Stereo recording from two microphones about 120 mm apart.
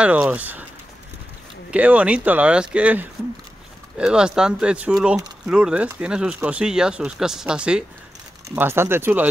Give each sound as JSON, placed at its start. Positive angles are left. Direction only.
{"t": 0.0, "sound": "speech", "side_deg": -10}
{"t": 1.7, "sound": "speech", "side_deg": -10}
{"t": 8.5, "sound": "speech", "side_deg": -20}